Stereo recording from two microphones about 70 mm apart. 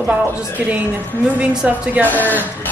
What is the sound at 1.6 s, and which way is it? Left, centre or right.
Speech, right.